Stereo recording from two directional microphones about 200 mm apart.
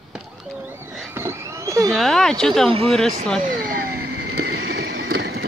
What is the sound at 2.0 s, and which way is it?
Speech, centre (ahead or behind).